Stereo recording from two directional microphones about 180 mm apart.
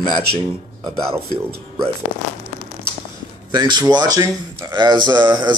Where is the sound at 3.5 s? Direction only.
25° right (ahead or behind).